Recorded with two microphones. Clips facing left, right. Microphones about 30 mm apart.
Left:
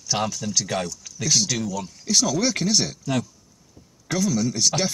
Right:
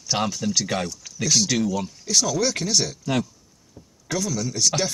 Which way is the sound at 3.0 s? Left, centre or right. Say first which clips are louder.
Right 1 dB; centre.